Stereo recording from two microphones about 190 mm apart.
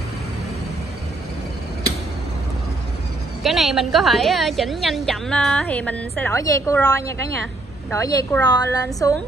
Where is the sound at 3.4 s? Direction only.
Centre (ahead or behind).